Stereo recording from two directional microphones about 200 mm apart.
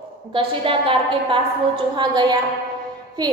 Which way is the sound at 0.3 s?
25° right (ahead or behind).